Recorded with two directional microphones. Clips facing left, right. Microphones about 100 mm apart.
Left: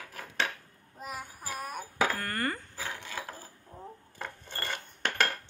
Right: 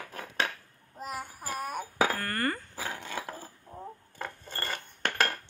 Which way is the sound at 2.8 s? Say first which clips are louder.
Right 2 dB; 50° right (ahead or behind).